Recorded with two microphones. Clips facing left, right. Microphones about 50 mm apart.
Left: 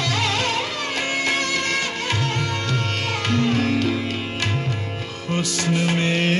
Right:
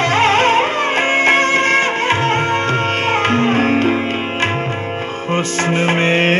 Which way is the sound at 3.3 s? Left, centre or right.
Right.